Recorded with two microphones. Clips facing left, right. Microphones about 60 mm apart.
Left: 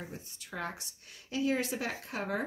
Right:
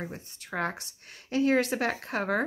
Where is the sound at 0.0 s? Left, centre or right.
Right.